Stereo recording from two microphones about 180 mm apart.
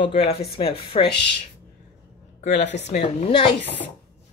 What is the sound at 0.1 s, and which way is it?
Speech, 35° left (ahead or behind).